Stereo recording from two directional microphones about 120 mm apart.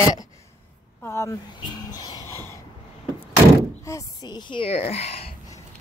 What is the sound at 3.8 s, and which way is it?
Speech, 30° left (ahead or behind).